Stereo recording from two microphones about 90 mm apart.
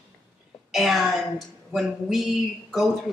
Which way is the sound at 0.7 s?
Centre (ahead or behind).